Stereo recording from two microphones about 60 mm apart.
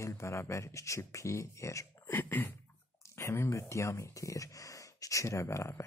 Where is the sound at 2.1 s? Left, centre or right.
Left.